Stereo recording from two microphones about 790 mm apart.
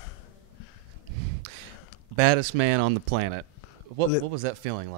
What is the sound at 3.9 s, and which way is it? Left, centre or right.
Speech, right.